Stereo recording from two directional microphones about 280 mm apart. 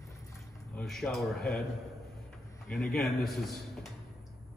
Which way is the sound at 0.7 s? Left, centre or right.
Centre.